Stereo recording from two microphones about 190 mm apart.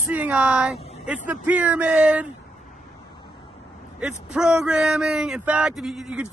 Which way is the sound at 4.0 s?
5° right (ahead or behind).